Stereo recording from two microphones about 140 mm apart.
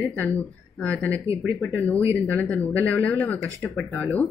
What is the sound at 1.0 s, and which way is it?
Speech, 20° right (ahead or behind).